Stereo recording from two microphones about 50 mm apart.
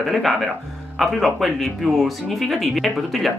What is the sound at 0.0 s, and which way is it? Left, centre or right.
Speech, centre.